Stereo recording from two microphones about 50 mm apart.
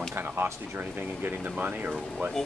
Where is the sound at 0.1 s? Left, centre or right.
Right.